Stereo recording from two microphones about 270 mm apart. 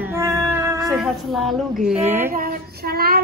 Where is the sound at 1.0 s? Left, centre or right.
Centre.